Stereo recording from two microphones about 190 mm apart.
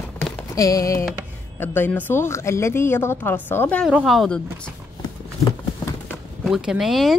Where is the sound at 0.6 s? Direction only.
20° left (ahead or behind); by 4.4 s centre (ahead or behind).